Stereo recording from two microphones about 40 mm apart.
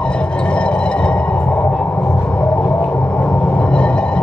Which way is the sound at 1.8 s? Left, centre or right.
Left.